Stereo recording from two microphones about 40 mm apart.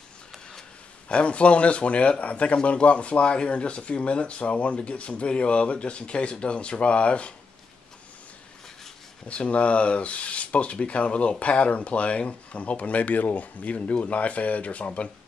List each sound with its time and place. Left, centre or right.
1.0 s a man's voice: left
9.3 s speech: left